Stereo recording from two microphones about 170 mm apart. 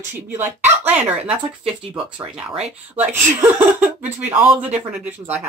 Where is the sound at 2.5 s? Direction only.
40° right (ahead or behind).